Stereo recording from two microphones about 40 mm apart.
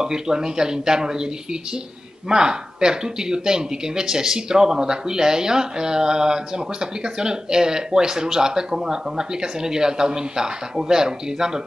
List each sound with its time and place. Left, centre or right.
0.0 s speech: centre